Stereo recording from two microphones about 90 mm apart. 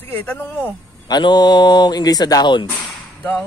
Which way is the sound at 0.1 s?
20° left (ahead or behind).